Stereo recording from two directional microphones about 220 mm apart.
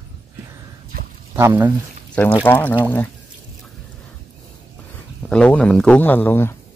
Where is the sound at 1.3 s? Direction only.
10° right (ahead or behind).